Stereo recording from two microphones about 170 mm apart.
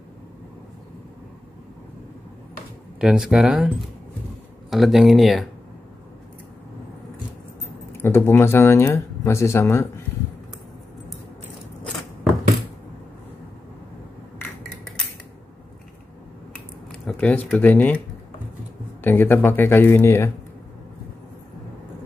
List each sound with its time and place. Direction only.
3.0 s speech: 5° right (ahead or behind)
8.0 s speech: 15° left (ahead or behind)
17.0 s speech: 10° left (ahead or behind)
19.0 s speech: 10° left (ahead or behind)